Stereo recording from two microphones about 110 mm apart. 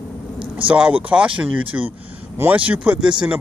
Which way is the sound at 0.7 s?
10° right (ahead or behind).